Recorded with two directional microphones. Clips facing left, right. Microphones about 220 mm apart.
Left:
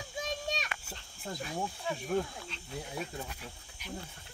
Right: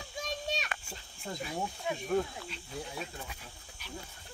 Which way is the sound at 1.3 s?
Centre (ahead or behind).